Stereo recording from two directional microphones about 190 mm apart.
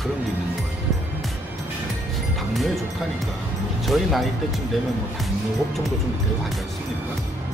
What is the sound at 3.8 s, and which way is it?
Speech, centre (ahead or behind).